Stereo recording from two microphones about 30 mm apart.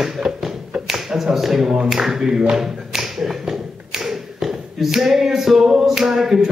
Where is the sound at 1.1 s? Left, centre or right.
Centre.